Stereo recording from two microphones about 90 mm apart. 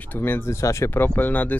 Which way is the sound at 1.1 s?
20° left (ahead or behind).